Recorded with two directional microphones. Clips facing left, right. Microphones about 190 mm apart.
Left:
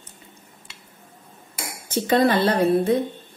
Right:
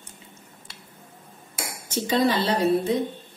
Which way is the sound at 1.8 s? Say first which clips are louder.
Left 3 dB; 55° left (ahead or behind).